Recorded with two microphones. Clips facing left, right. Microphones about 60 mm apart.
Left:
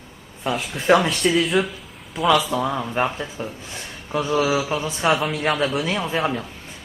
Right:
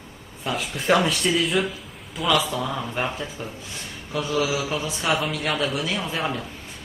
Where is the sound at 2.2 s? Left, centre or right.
Centre.